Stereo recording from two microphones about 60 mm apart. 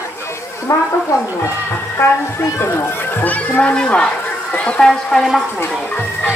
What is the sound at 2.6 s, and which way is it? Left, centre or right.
Speech, left.